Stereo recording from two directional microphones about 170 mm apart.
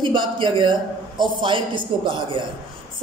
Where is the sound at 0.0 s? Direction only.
30° right (ahead or behind).